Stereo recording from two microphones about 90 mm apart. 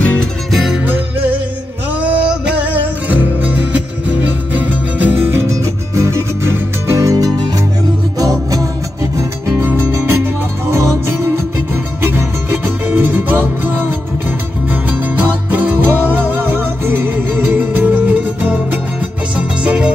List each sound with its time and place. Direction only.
0.0 s music: 15° left (ahead or behind)
0.5 s music: centre (ahead or behind)
2.0 s music: 15° right (ahead or behind)